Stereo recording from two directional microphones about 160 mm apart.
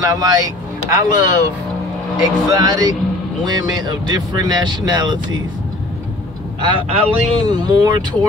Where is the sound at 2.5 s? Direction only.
25° right (ahead or behind).